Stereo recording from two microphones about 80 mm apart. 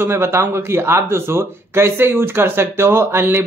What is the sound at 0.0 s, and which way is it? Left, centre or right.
A man's voice, right.